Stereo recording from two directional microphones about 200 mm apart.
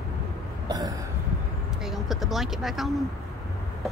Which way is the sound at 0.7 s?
20° right (ahead or behind).